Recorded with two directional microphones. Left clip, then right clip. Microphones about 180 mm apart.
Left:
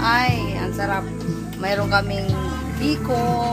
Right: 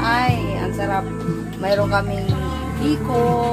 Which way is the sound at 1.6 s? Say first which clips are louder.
Right 2 dB; 30° left (ahead or behind).